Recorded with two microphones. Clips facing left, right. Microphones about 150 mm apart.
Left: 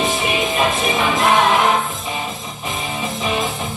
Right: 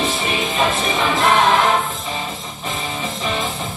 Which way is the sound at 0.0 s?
15° left (ahead or behind).